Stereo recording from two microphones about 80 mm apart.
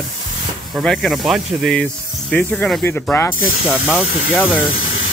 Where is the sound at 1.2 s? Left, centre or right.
Centre.